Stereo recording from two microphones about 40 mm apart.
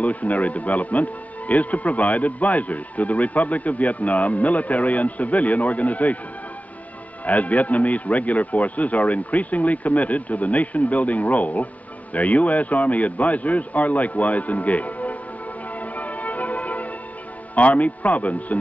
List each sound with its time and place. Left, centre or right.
0.0 s a man's voice: left
7.2 s a man's voice: left
15.8 s music: left
17.6 s a man's voice: left